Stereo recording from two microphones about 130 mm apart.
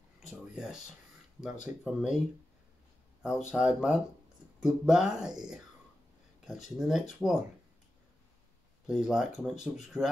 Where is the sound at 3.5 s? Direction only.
5° right (ahead or behind).